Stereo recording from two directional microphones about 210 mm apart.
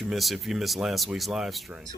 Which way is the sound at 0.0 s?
Centre (ahead or behind).